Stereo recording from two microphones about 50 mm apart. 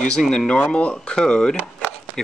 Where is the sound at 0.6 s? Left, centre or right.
Left.